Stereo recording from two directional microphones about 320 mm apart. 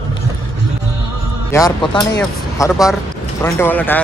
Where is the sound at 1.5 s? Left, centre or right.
Centre.